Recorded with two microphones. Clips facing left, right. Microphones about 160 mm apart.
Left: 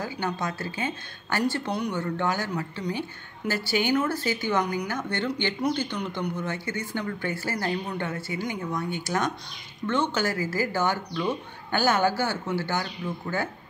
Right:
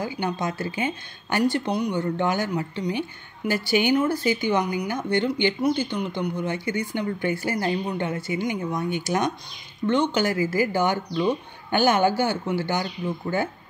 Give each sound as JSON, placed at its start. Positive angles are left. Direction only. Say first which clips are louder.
{"t": 0.0, "sound": "a woman's voice", "louder": "right 3 dB", "side_deg": -20}